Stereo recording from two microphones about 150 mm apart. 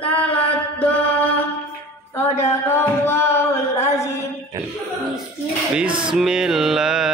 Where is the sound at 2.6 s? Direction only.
15° left (ahead or behind).